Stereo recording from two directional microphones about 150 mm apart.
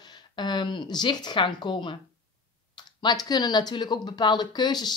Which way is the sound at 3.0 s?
30° left (ahead or behind).